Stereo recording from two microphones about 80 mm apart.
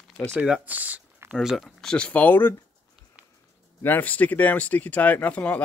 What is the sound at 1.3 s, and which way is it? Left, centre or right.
Speech, centre.